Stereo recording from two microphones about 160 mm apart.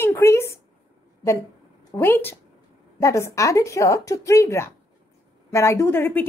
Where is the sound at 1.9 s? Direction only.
15° left (ahead or behind).